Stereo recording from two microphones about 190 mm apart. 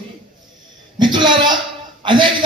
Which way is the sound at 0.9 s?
25° right (ahead or behind).